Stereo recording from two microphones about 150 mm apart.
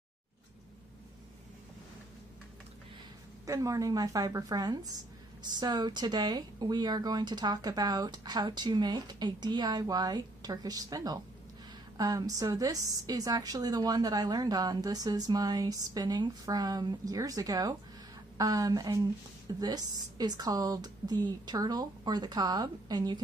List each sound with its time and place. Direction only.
3.4 s speech: 25° right (ahead or behind)